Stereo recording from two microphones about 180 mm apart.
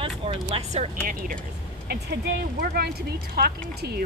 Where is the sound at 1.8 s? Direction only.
60° right (ahead or behind).